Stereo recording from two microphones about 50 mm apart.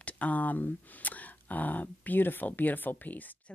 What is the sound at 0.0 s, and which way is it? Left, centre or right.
Speech, left.